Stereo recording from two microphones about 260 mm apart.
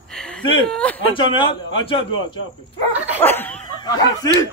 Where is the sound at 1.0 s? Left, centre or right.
Centre.